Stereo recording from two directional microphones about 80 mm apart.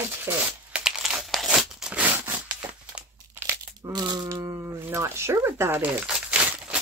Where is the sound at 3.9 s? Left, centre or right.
Right.